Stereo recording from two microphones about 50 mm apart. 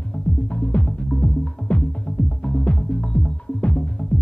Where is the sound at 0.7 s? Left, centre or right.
Centre.